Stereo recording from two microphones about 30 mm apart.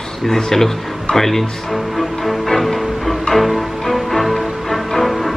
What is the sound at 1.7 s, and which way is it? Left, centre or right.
Music, centre.